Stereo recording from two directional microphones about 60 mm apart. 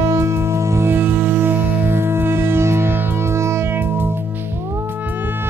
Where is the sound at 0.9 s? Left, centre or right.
Right.